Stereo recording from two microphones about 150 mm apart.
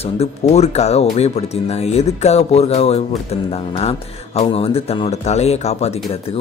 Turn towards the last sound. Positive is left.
turn(degrees=45)  # may be behind; listen again after turning